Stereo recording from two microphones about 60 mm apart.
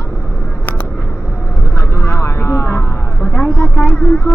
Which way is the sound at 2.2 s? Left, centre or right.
Left.